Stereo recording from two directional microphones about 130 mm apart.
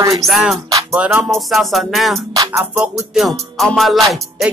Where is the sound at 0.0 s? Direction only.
25° right (ahead or behind).